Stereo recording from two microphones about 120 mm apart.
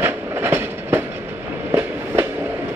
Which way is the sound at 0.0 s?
20° right (ahead or behind).